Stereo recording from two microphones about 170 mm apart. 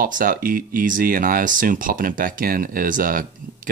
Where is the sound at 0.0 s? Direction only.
55° right (ahead or behind).